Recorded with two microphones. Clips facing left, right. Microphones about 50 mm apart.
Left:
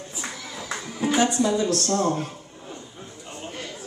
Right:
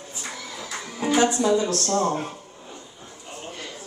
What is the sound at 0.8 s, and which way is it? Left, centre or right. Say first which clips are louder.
Music: even; centre.